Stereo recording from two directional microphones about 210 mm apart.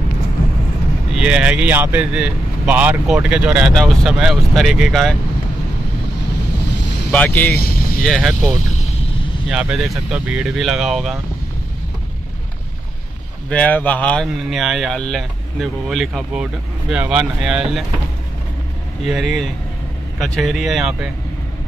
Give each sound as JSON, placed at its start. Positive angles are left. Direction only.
{"t": 1.1, "sound": "speech", "side_deg": -5}
{"t": 7.1, "sound": "speech", "side_deg": 10}
{"t": 13.5, "sound": "speech", "side_deg": 5}
{"t": 19.0, "sound": "speech", "side_deg": 0}